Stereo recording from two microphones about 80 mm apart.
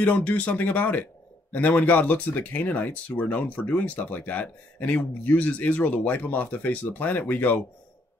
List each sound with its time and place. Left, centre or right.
0.0 s speech: centre